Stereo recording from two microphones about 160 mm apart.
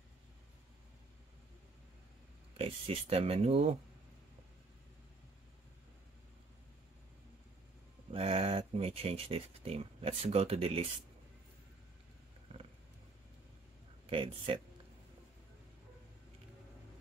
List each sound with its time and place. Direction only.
2.5 s speech: 40° right (ahead or behind)
8.1 s speech: 35° right (ahead or behind)
14.0 s speech: 35° right (ahead or behind)